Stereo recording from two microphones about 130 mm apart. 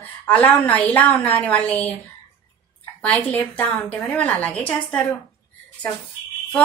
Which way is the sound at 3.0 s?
10° left (ahead or behind).